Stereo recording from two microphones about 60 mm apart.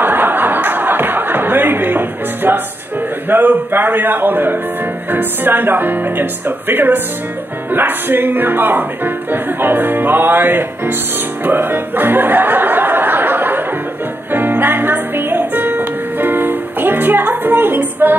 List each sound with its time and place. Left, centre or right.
0.0 s a sound: right
3.3 s speech: right
11.4 s music: right